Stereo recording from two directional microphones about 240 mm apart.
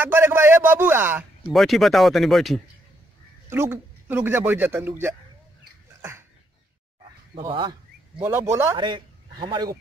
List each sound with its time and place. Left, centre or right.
0.0 s speech: centre
3.4 s speech: centre
7.4 s speech: centre